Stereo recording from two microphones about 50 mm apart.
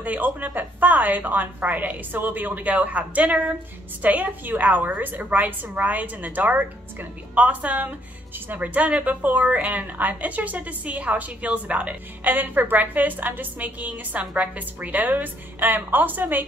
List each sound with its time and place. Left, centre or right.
0.0 s a woman's voice: right
12.2 s a woman's voice: right